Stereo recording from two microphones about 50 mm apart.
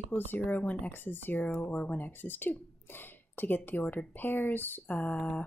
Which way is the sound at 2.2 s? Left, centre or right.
Left.